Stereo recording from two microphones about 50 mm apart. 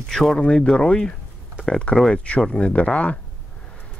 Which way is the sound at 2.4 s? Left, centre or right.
Centre.